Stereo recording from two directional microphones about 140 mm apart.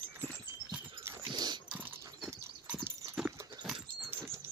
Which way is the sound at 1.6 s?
10° right (ahead or behind).